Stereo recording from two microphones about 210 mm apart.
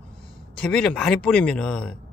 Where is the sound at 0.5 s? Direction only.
5° left (ahead or behind).